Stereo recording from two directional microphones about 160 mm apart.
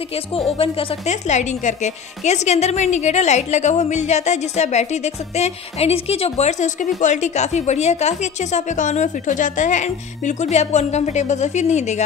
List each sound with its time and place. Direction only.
0.5 s a woman's voice: 35° left (ahead or behind)